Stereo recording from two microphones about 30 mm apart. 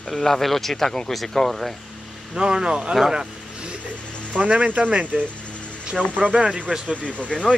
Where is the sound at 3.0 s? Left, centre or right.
Centre.